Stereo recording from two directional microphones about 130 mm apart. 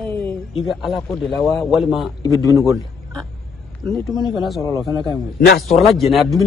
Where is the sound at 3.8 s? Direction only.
5° left (ahead or behind).